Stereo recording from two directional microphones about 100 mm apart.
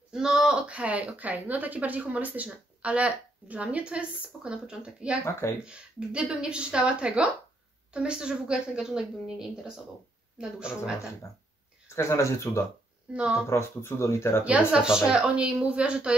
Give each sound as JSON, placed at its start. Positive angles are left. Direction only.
{"t": 0.1, "sound": "a woman's voice", "side_deg": -5}
{"t": 11.9, "sound": "speech", "side_deg": 30}
{"t": 13.1, "sound": "a woman's voice", "side_deg": -10}
{"t": 13.5, "sound": "speech", "side_deg": 25}
{"t": 14.4, "sound": "a woman's voice", "side_deg": -10}